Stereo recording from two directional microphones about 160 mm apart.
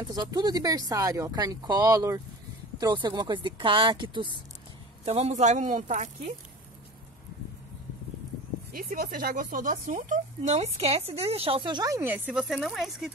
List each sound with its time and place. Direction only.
0.0 s speech: 25° right (ahead or behind)
5.0 s speech: 45° right (ahead or behind)
8.7 s speech: 65° right (ahead or behind); by 13.1 s centre (ahead or behind)